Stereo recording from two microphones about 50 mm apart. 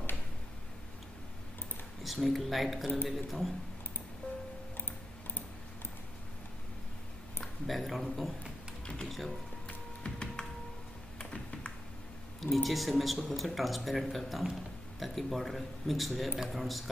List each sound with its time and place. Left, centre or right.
2.0 s speech: centre
7.6 s speech: centre
10.0 s computer keyboard: centre
11.1 s music: centre
12.4 s speech: centre